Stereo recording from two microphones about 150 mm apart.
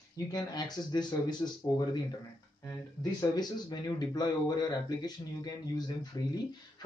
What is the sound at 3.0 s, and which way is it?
Speech, 25° left (ahead or behind).